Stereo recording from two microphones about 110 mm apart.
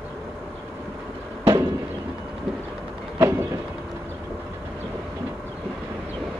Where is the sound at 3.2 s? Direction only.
25° right (ahead or behind).